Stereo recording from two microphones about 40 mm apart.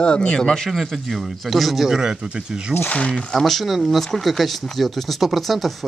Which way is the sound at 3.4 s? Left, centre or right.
Centre.